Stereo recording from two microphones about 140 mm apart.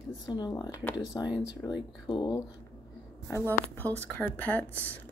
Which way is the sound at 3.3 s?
15° left (ahead or behind).